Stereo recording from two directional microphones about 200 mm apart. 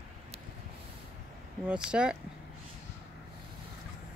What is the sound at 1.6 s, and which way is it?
Speech, 5° right (ahead or behind).